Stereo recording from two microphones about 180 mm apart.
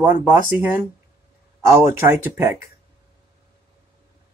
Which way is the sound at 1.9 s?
15° right (ahead or behind).